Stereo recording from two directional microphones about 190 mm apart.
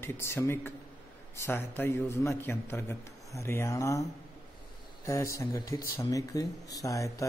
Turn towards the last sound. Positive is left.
turn(degrees=15)  # may be behind; listen again after turning